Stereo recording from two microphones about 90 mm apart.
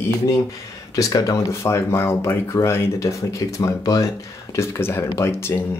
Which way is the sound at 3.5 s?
40° left (ahead or behind).